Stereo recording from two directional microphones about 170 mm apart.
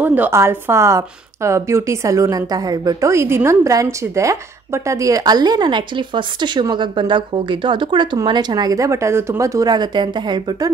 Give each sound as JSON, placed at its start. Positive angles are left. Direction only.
{"t": 0.0, "sound": "a woman's voice", "side_deg": -10}